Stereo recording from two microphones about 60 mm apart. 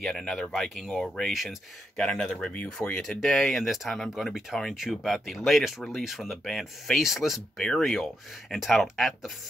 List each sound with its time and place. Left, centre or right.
0.0 s speech: centre
1.1 s speech: centre
2.0 s speech: centre
2.9 s speech: centre
7.5 s speech: centre